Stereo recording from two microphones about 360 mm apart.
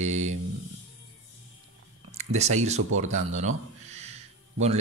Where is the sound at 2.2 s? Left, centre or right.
Centre.